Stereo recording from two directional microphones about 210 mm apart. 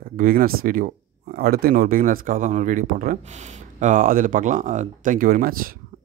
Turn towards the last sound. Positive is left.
turn(degrees=-45)  # may be behind; listen again after turning